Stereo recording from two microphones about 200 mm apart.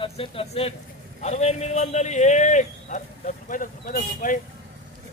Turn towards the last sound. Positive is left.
turn(degrees=40)  # may be behind; listen again after turning